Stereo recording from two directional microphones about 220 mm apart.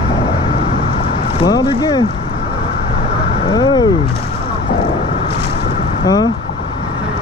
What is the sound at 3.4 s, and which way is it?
Speech, 20° left (ahead or behind).